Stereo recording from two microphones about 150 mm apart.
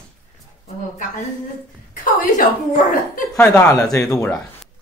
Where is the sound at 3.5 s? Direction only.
15° left (ahead or behind).